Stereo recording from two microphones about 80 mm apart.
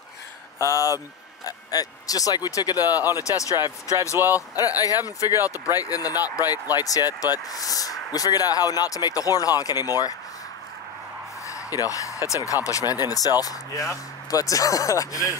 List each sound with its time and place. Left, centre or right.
0.6 s speech: left
4.6 s speech: left
11.4 s a sound: left
12.6 s speech: left